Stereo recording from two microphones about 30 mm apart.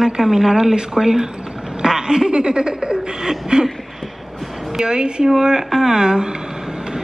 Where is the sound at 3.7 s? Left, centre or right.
Centre.